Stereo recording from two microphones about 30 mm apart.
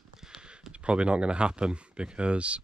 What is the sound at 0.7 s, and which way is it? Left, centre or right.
Speech, right.